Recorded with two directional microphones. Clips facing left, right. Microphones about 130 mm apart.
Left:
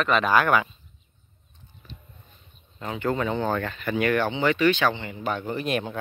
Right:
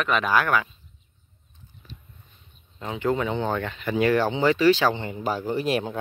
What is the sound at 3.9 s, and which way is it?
Speech, 30° right (ahead or behind).